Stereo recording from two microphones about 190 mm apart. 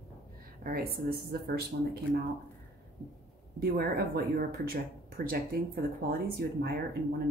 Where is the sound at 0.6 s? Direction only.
50° right (ahead or behind).